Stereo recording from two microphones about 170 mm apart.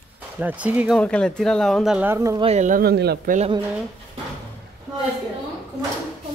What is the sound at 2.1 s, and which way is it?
Speech, 15° right (ahead or behind).